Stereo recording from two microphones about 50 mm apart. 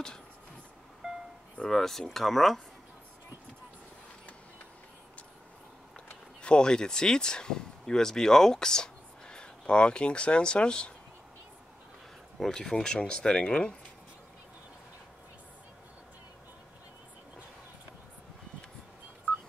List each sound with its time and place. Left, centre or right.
1.0 s music: centre
1.6 s speech: centre
6.4 s speech: centre
12.4 s speech: centre